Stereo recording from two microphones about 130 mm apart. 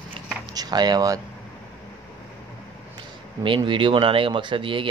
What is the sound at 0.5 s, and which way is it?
Speech, 30° right (ahead or behind).